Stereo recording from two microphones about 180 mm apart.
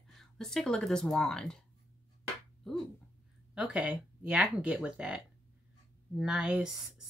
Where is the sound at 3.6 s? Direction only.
5° right (ahead or behind).